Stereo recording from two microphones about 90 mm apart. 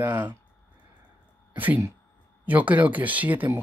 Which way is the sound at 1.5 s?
20° right (ahead or behind).